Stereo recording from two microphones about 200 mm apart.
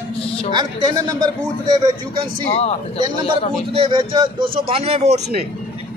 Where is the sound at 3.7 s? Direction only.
25° right (ahead or behind).